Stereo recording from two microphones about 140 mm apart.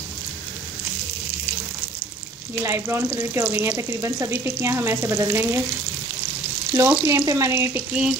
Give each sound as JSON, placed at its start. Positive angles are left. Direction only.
{"t": 2.6, "sound": "frying", "side_deg": -20}
{"t": 6.7, "sound": "frying", "side_deg": -20}